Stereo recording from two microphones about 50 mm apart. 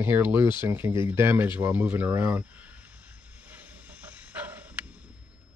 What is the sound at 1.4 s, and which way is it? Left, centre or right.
Speech, right.